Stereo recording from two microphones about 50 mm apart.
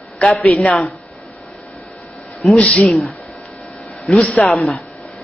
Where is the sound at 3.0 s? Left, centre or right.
Left.